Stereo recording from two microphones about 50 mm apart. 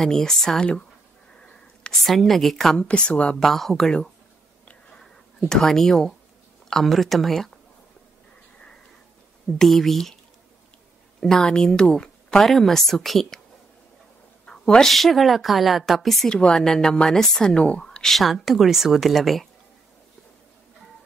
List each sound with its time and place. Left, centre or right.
0.0 s speech: centre
1.4 s whispering: centre
2.0 s a woman's voice: centre
2.9 s speech: left
3.3 s a woman's voice: centre
9.6 s a woman's voice: centre
11.1 s speech: centre
14.4 s a sound: centre
14.9 s a woman's voice: centre
16.3 s speech: centre
18.1 s a woman's voice: centre